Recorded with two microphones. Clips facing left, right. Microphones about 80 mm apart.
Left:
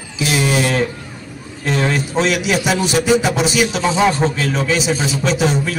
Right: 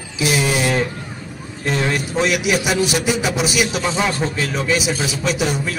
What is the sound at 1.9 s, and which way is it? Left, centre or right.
A man's voice, centre.